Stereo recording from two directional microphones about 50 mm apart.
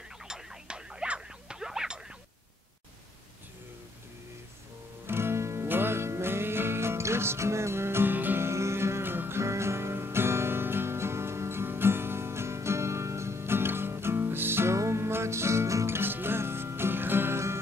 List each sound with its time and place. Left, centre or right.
0.3 s a sound: centre
1.6 s music: centre
5.0 s music: right
5.7 s music: right
8.4 s music: right
9.4 s music: right
14.8 s music: right
16.0 s music: right